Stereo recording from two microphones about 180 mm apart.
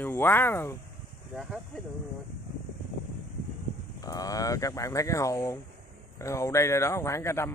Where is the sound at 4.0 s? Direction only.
20° left (ahead or behind).